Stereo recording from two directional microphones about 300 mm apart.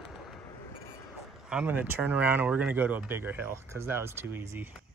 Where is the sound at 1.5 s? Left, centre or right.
Centre.